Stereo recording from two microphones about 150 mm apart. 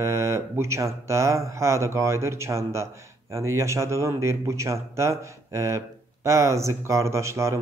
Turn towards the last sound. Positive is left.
turn(degrees=-20)  # may be behind; listen again after turning